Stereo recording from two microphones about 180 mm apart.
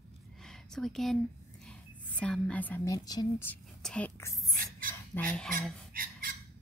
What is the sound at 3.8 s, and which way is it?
Speech, 10° left (ahead or behind).